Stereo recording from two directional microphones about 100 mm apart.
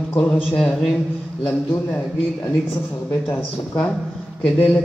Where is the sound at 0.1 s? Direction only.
15° left (ahead or behind).